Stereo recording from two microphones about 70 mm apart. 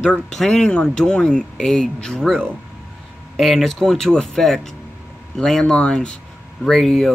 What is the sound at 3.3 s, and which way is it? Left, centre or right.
Speech, centre.